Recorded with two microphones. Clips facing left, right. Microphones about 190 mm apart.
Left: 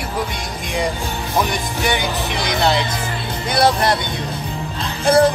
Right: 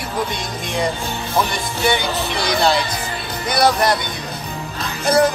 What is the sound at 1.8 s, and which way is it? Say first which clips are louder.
Speech: right 2 dB; 15° left (ahead or behind).